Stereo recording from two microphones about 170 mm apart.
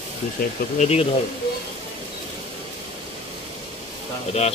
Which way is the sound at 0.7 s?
40° left (ahead or behind).